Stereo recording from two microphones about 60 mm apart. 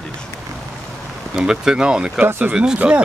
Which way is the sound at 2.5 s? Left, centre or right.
Centre.